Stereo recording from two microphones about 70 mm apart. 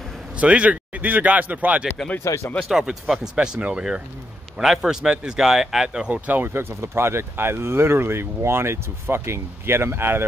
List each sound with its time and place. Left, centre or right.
0.4 s speech: centre
2.1 s speech: left
2.7 s speech: centre; by 10.2 s right